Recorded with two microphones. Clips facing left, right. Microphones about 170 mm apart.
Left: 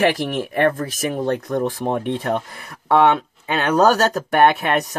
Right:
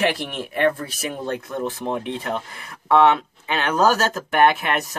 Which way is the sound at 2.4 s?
40° left (ahead or behind).